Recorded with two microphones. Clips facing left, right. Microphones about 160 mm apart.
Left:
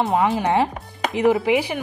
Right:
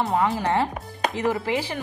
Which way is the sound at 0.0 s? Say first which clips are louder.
Left 3 dB; 20° left (ahead or behind).